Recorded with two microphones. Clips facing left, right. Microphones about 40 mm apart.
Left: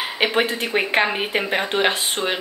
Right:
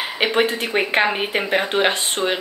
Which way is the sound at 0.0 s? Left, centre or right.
Centre.